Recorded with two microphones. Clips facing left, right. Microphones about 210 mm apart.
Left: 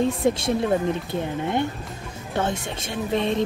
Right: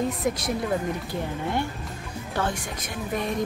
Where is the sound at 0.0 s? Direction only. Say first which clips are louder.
Left 5 dB; 25° left (ahead or behind).